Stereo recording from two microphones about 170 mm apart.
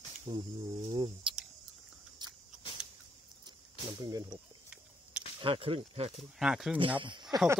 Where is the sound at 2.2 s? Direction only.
25° right (ahead or behind).